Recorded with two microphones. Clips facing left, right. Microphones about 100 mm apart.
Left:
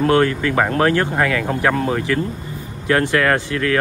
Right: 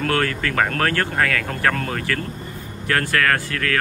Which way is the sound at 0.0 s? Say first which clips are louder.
Left 6 dB; 20° left (ahead or behind).